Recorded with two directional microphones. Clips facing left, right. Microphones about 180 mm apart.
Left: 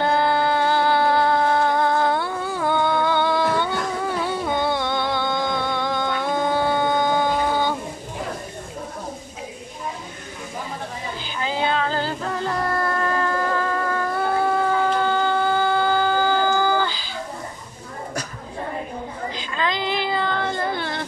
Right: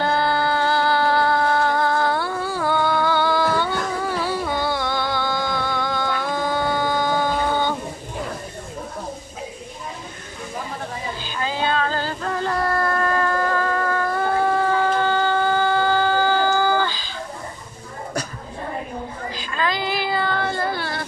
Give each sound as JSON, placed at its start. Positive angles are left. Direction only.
{"t": 0.0, "sound": "music", "side_deg": 15}
{"t": 11.2, "sound": "music", "side_deg": 15}
{"t": 14.7, "sound": "music", "side_deg": 15}
{"t": 19.3, "sound": "child singing", "side_deg": 20}